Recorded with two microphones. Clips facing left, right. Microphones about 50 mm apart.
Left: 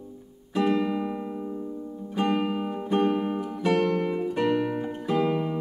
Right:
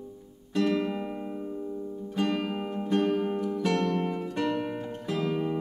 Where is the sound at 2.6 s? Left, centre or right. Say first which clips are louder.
Right 1 dB; centre.